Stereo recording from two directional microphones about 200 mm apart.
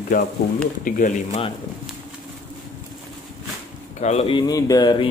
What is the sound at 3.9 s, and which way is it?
A man's voice, 35° left (ahead or behind).